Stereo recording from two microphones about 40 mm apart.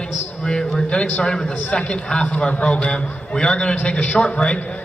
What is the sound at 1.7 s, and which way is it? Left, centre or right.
A man's voice, left.